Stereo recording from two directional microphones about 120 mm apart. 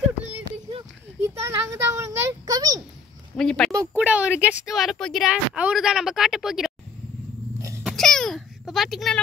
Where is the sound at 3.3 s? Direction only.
5° left (ahead or behind).